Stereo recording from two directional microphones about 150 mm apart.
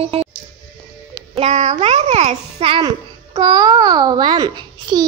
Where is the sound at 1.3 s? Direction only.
50° right (ahead or behind).